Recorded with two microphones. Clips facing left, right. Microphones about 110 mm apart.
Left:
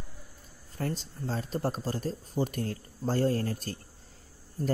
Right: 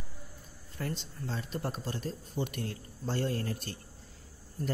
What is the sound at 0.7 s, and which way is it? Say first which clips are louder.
Speech: left 4 dB; 40° left (ahead or behind).